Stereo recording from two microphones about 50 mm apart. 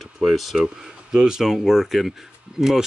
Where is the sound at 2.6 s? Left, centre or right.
Centre.